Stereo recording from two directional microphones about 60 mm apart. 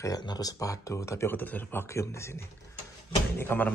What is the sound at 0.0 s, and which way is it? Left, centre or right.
Speech, left.